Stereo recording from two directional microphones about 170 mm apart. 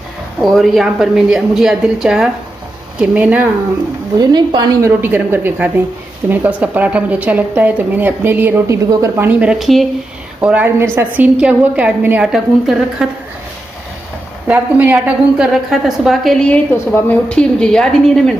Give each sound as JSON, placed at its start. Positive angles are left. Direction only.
{"t": 0.4, "sound": "a woman's voice", "side_deg": 0}
{"t": 4.2, "sound": "a woman's voice", "side_deg": -25}
{"t": 5.0, "sound": "a woman's voice", "side_deg": -10}
{"t": 14.5, "sound": "a woman's voice", "side_deg": -10}